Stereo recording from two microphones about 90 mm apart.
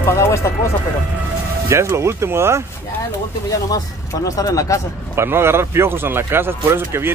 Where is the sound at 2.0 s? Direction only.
30° right (ahead or behind).